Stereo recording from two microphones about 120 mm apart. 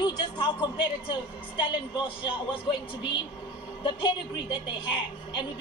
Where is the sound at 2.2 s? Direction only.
45° left (ahead or behind).